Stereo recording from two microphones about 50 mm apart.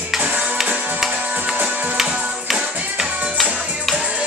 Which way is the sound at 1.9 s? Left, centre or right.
Centre.